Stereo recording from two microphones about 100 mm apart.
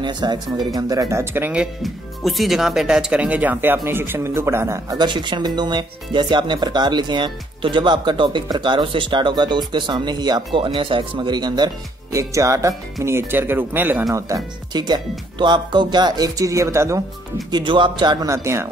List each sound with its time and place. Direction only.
0.0 s speech: 50° right (ahead or behind); by 1.5 s 20° right (ahead or behind)
1.5 s speech: 5° right (ahead or behind); by 4.8 s 25° right (ahead or behind)
4.8 s speech: 50° right (ahead or behind)
12.1 s speech: 35° right (ahead or behind)
14.1 s speech: 40° right (ahead or behind)
17.5 s speech: 50° right (ahead or behind); by 18.7 s 30° right (ahead or behind)